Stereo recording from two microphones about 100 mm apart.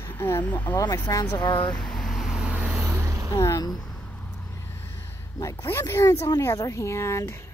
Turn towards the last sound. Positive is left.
turn(degrees=30)  # may be behind; listen again after turning